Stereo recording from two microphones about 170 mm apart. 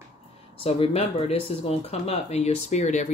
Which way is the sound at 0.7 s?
35° left (ahead or behind).